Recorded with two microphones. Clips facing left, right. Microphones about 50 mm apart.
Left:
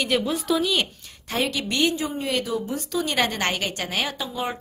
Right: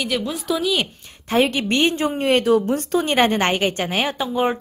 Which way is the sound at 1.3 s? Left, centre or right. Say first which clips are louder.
Right 7 dB; right.